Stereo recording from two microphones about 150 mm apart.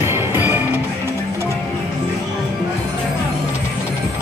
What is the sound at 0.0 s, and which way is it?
Music, 15° right (ahead or behind).